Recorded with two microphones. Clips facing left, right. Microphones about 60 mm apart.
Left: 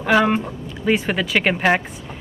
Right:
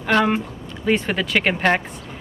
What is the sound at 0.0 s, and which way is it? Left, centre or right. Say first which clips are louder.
Speech: left 2 dB; centre.